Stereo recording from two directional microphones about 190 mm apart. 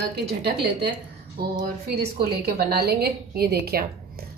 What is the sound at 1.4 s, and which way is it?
A woman's voice, 55° right (ahead or behind).